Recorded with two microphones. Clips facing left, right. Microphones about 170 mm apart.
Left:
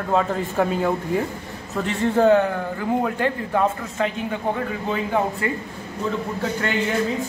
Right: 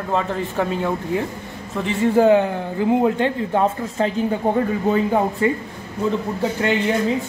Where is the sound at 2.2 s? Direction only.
15° right (ahead or behind); by 5.5 s 35° right (ahead or behind).